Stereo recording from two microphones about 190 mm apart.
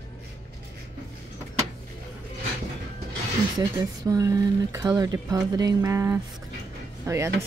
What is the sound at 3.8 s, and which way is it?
Speech, 20° right (ahead or behind).